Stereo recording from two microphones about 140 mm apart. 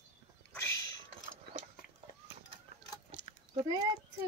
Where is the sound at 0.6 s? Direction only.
20° left (ahead or behind).